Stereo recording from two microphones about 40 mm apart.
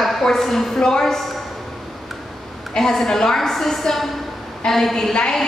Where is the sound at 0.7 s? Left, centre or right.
Centre.